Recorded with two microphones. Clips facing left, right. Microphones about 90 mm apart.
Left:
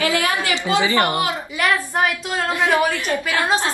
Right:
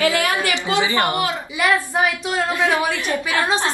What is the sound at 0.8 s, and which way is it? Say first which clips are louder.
Speech: left 1 dB; 20° right (ahead or behind).